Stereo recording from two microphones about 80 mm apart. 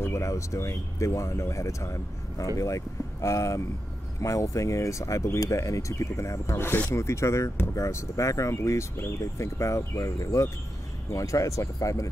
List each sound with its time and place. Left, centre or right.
0.0 s speech: left